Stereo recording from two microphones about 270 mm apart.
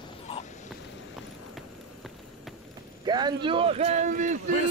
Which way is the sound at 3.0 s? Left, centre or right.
Centre.